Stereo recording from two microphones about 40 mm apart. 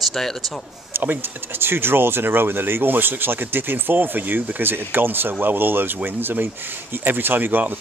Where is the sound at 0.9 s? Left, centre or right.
Right.